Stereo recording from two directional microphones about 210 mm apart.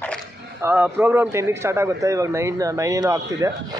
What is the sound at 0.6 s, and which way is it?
A man's voice, 10° right (ahead or behind).